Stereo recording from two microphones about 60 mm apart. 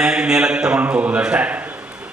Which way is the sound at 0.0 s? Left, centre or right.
Centre.